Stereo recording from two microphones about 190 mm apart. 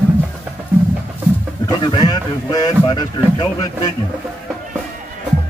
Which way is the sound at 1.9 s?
20° left (ahead or behind).